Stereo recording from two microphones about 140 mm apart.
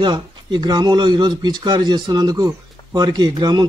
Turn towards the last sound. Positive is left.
turn(degrees=-30)  # may be behind; listen again after turning